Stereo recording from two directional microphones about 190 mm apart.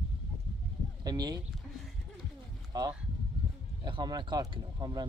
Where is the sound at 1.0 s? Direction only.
20° right (ahead or behind).